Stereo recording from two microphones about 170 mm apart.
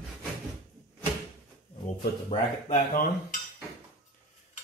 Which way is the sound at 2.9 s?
55° left (ahead or behind).